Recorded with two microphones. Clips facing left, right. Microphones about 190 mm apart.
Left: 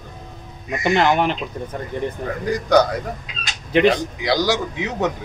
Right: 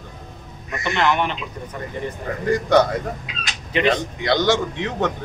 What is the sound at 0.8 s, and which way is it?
Speech, 40° left (ahead or behind).